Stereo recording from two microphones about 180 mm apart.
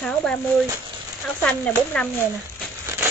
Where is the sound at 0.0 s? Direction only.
5° left (ahead or behind).